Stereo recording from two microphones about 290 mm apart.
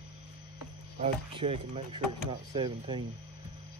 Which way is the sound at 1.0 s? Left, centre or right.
Right.